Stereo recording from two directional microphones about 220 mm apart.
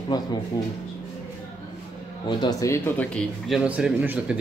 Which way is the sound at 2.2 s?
15° left (ahead or behind).